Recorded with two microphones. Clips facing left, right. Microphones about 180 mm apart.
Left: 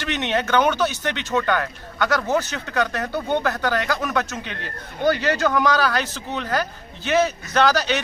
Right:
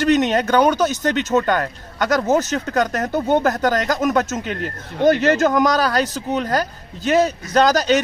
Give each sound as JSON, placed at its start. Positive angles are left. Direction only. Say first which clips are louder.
{"t": 0.0, "sound": "speech", "louder": "right 8 dB", "side_deg": -40}